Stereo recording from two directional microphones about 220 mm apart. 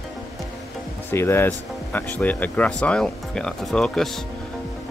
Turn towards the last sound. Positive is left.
turn(degrees=0)  # may be behind; listen again after turning